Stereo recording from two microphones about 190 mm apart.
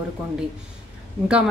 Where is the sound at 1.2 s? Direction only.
5° right (ahead or behind).